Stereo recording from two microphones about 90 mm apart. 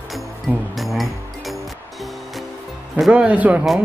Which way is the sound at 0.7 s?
Centre (ahead or behind).